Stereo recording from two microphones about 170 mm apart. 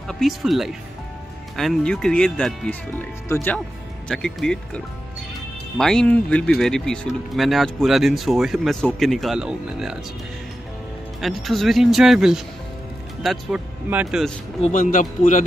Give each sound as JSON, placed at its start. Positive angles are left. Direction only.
{"t": 0.1, "sound": "speech", "side_deg": 0}
{"t": 4.1, "sound": "speech", "side_deg": 5}
{"t": 11.1, "sound": "speech", "side_deg": 0}
{"t": 14.6, "sound": "speech", "side_deg": 50}